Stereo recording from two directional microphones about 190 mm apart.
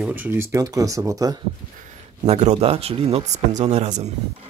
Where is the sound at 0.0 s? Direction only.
10° right (ahead or behind).